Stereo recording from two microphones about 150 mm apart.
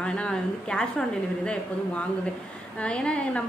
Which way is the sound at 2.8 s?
5° left (ahead or behind).